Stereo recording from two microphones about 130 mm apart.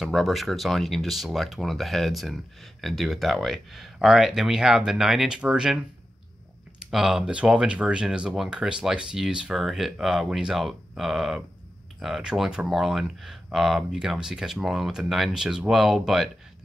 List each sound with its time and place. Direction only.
0.0 s speech: centre (ahead or behind)